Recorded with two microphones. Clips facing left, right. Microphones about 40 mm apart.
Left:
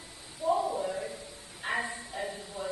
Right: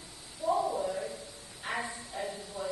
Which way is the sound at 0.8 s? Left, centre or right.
Centre.